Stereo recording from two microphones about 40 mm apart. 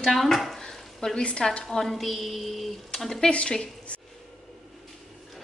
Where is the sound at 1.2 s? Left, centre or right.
Left.